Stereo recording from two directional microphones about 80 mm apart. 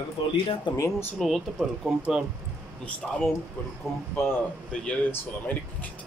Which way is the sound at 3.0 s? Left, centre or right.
Centre.